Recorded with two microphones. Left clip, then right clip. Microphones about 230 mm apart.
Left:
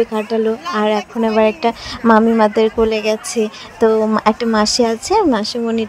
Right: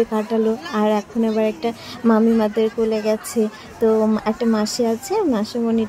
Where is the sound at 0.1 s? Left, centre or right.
Centre.